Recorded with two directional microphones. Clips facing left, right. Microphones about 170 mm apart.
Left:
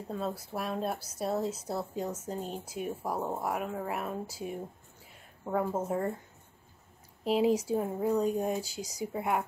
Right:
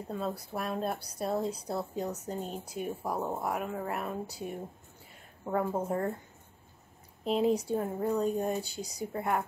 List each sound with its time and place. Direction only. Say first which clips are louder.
0.1 s speech: even; centre (ahead or behind)
7.2 s speech: left 1 dB; 5° left (ahead or behind)